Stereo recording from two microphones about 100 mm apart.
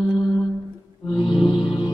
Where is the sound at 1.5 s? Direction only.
55° left (ahead or behind).